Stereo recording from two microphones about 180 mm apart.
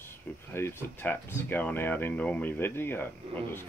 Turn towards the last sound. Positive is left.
turn(degrees=10)  # may be behind; listen again after turning